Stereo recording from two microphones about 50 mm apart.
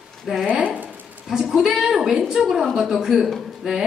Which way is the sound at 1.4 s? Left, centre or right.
Centre.